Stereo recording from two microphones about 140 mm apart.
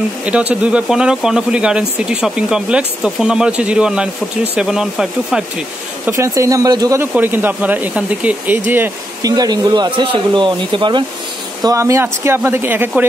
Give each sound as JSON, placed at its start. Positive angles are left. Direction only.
{"t": 0.2, "sound": "speech", "side_deg": -10}
{"t": 6.0, "sound": "speech", "side_deg": -20}
{"t": 7.0, "sound": "speech", "side_deg": -15}
{"t": 9.2, "sound": "speech", "side_deg": -30}
{"t": 11.6, "sound": "speech", "side_deg": -20}